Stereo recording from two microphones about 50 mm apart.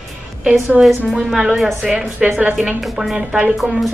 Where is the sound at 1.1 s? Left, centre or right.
Centre.